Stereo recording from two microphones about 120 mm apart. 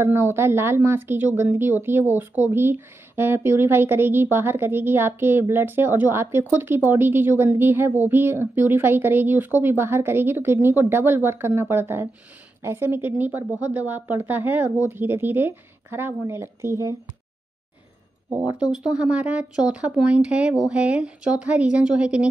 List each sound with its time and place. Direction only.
0.0 s a woman's voice: 20° right (ahead or behind)
18.6 s a woman's voice: 10° right (ahead or behind)